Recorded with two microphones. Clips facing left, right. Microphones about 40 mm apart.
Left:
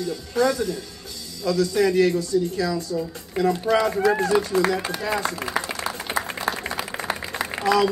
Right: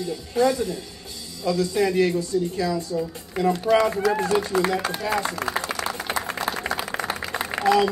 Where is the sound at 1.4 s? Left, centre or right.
Right.